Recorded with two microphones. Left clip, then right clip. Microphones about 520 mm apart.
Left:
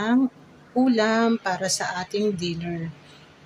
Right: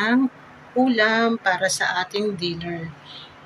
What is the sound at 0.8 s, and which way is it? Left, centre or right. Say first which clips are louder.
Speech: right 2 dB; left.